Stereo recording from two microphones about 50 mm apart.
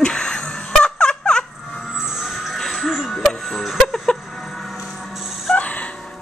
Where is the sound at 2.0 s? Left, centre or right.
Centre.